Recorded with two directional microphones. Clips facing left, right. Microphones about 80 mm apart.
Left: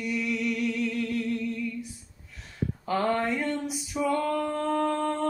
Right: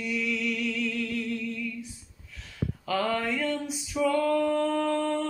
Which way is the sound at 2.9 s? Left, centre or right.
Left.